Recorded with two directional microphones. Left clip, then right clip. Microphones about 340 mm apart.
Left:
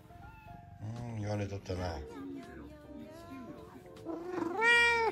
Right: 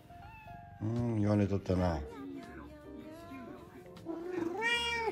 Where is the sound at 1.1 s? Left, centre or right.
Centre.